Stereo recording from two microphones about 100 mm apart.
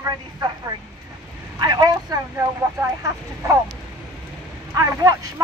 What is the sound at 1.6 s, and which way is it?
Speech, 45° right (ahead or behind).